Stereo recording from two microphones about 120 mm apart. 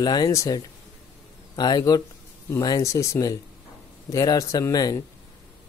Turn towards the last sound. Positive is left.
turn(degrees=30)  # may be behind; listen again after turning